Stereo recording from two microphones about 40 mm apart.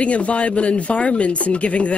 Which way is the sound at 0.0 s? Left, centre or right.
Left.